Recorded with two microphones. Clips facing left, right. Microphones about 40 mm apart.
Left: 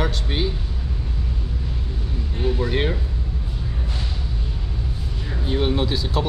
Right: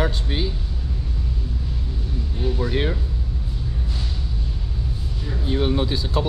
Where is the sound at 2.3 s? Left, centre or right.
Left.